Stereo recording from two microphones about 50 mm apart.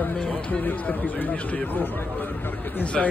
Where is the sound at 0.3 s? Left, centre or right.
Left.